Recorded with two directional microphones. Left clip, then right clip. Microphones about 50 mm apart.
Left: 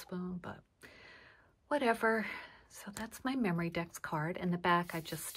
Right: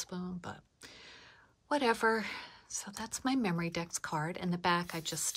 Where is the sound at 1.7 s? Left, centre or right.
Right.